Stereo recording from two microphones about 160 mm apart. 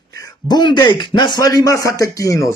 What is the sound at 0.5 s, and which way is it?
A man's voice, 25° left (ahead or behind).